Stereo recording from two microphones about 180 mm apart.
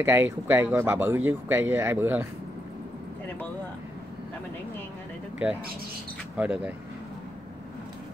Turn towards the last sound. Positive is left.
turn(degrees=-5)  # may be behind; listen again after turning